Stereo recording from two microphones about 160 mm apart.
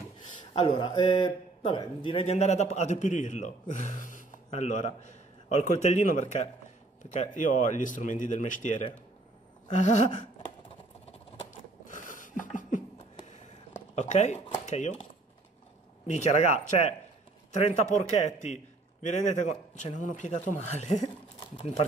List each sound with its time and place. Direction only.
0.4 s speech: 30° left (ahead or behind); by 10.0 s 50° left (ahead or behind)
11.9 s a sound: 55° left (ahead or behind)
16.1 s speech: 45° left (ahead or behind)